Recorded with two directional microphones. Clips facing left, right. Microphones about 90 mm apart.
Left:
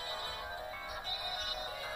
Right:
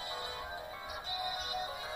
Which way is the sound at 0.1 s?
20° right (ahead or behind).